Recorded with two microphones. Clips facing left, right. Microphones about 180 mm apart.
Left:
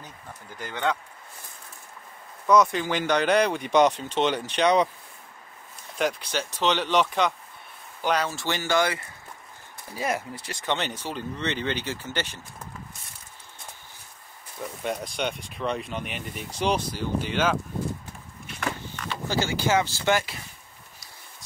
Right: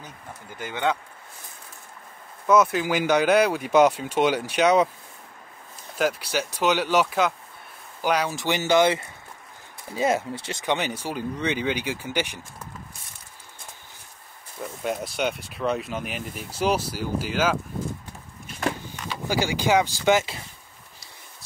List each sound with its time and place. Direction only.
0.6 s speech: 5° right (ahead or behind)
2.4 s speech: 5° right (ahead or behind)
5.9 s speech: 5° right (ahead or behind); by 10.6 s 25° right (ahead or behind)
10.6 s speech: 10° right (ahead or behind)
14.8 s speech: 5° right (ahead or behind)
19.0 s speech: 10° right (ahead or behind)